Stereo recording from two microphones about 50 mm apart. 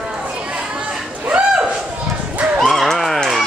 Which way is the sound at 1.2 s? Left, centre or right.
Right.